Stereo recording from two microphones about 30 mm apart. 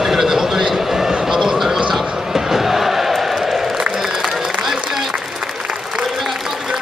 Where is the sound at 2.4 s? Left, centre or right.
Centre.